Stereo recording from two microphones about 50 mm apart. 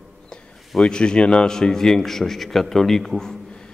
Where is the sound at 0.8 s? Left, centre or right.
Centre.